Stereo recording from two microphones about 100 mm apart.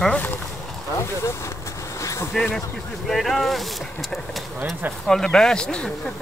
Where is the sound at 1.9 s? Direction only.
30° left (ahead or behind).